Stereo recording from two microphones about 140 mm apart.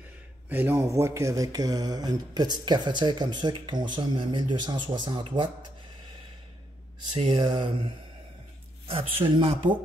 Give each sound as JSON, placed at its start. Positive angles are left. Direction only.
{"t": 0.5, "sound": "speech", "side_deg": -15}
{"t": 7.2, "sound": "speech", "side_deg": -35}